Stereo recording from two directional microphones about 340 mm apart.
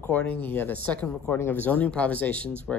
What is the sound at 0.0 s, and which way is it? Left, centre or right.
Speech, centre.